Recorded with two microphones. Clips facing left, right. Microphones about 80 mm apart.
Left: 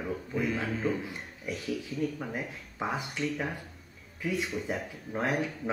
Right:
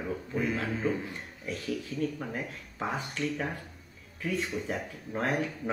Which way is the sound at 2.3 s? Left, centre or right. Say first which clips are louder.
Even; centre.